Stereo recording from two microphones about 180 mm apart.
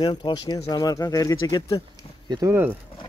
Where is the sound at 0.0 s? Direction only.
25° left (ahead or behind).